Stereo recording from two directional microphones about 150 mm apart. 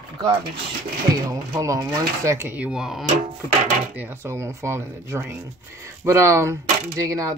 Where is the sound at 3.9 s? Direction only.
15° right (ahead or behind).